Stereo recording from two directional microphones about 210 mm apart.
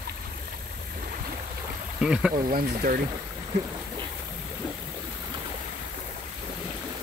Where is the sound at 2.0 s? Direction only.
5° right (ahead or behind).